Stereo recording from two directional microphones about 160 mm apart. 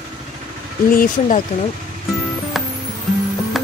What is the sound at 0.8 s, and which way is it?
Speech, 60° left (ahead or behind).